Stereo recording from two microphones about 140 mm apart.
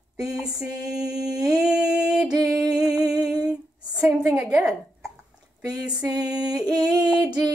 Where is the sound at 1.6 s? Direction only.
5° right (ahead or behind).